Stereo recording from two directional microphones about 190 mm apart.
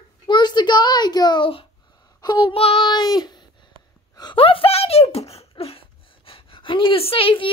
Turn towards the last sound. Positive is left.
turn(degrees=30)  # may be behind; listen again after turning